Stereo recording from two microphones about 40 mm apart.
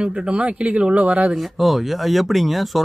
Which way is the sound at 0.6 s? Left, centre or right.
Right.